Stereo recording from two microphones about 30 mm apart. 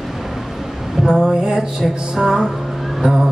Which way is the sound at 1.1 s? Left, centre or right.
Right.